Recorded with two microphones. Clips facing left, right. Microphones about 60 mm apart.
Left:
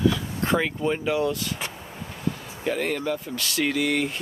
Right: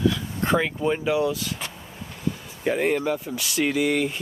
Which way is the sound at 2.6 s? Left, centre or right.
Centre.